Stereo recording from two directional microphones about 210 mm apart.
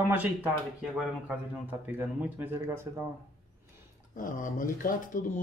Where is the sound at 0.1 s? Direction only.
10° right (ahead or behind).